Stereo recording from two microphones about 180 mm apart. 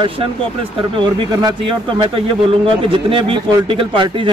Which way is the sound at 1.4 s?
30° right (ahead or behind).